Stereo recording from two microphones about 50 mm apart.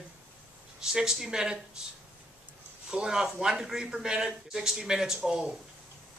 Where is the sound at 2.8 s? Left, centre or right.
Centre.